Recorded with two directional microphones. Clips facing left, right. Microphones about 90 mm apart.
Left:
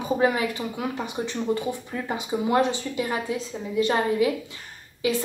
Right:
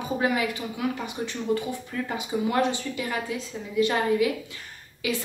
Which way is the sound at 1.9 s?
25° left (ahead or behind).